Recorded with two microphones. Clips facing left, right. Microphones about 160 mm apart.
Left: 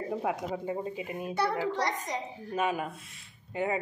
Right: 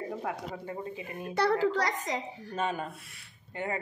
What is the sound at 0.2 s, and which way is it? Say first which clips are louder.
Speech: left 4 dB; 15° left (ahead or behind).